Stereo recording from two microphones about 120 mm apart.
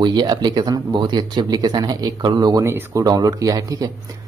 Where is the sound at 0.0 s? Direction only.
35° right (ahead or behind).